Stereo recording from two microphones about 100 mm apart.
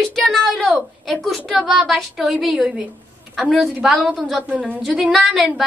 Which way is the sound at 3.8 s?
5° right (ahead or behind).